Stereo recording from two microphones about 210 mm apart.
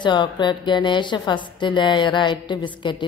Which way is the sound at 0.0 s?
20° left (ahead or behind).